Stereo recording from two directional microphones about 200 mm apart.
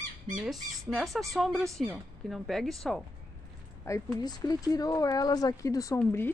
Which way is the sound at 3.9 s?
15° left (ahead or behind).